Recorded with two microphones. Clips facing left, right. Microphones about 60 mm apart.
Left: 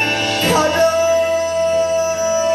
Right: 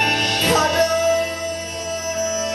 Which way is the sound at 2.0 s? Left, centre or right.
Centre.